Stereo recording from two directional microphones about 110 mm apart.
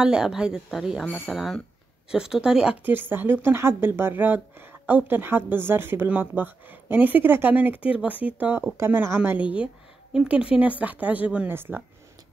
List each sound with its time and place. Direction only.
0.0 s a woman's voice: 5° right (ahead or behind)
2.8 s speech: 20° right (ahead or behind)